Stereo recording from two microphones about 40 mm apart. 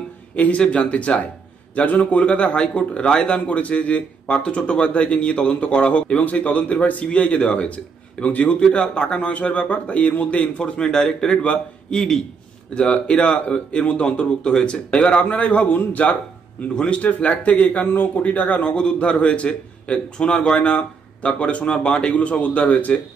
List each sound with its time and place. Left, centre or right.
0.3 s a man's voice: left
10.6 s speech: centre
12.7 s a man's voice: left
16.6 s a man's voice: left
17.8 s a man's voice: left
18.2 s a man's voice: left